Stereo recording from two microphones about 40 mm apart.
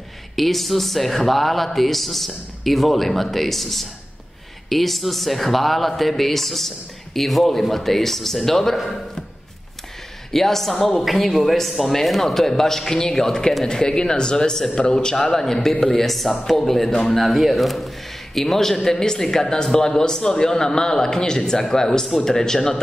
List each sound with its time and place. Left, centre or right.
0.4 s a man's voice: centre
10.3 s a man's voice: centre
17.2 s a man's voice: centre